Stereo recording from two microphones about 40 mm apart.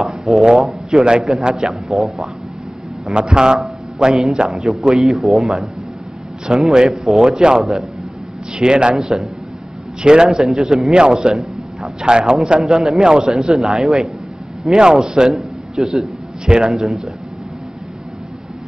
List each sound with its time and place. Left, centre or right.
0.0 s a sound: centre
0.4 s a man's voice: centre
1.7 s speech: centre
3.1 s a man's voice: centre
4.5 s speech: centre
6.5 s a man's voice: right
9.0 s speech: centre
10.0 s a man's voice: right
10.3 s a man's voice: centre
16.4 s a man's voice: centre
16.8 s speech: centre